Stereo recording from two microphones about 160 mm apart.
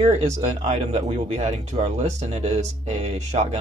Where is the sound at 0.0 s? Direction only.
45° right (ahead or behind).